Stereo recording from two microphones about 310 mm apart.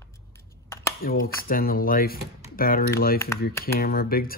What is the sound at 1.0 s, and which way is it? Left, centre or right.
Speech, left.